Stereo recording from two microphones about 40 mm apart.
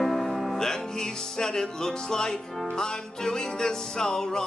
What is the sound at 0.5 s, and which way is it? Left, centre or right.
Music, centre.